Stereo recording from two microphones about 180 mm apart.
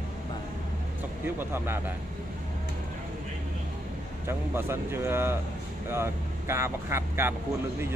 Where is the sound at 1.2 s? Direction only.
10° right (ahead or behind).